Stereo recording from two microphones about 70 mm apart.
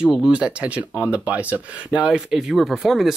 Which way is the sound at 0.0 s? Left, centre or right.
Centre.